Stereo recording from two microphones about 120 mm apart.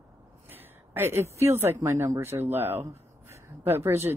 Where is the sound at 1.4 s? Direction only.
20° right (ahead or behind).